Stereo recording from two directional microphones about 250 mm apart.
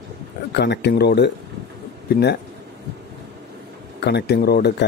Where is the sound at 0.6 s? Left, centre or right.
Left.